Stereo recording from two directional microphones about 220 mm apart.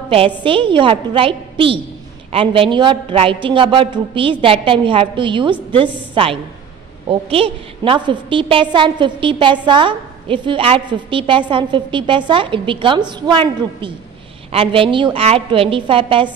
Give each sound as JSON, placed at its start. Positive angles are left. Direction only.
{"t": 0.1, "sound": "a woman's voice", "side_deg": -25}